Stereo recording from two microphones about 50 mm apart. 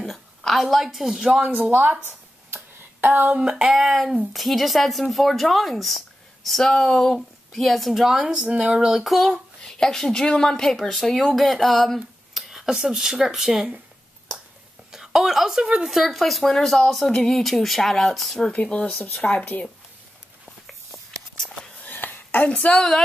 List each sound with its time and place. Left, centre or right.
0.0 s a woman's voice: centre
1.4 s speech: right
2.0 s a sound: right
3.3 s a woman's voice: centre
8.3 s a woman's voice: centre
9.6 s speech: centre
14.9 s a woman's voice: centre
18.5 s speech: left
21.8 s a sound: left
22.5 s speech: left
22.8 s speech: centre